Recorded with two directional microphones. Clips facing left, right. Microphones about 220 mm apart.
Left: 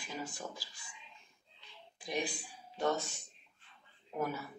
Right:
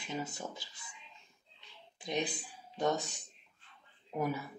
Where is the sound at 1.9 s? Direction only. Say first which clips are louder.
Right 2 dB; 20° right (ahead or behind).